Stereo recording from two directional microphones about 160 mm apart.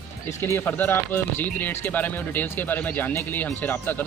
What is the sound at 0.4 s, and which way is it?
Speech, 15° left (ahead or behind).